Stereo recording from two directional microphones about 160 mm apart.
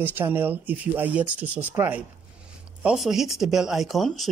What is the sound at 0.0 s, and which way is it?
Speech, 10° right (ahead or behind).